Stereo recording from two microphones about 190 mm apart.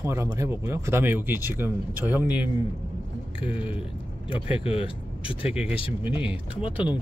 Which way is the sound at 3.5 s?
30° left (ahead or behind).